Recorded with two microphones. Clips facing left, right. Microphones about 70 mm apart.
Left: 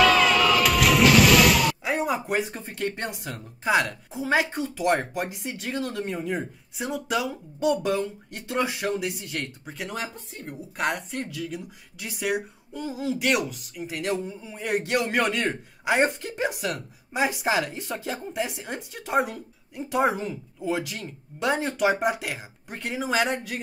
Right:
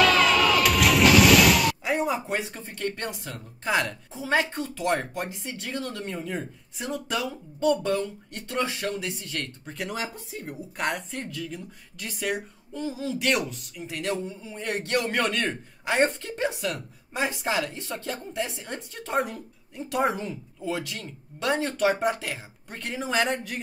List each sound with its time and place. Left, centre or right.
0.0 s a sound: centre
2.7 s speech: centre
3.6 s a woman's voice: centre